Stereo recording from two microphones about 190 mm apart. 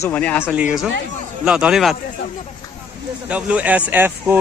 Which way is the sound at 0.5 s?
5° right (ahead or behind).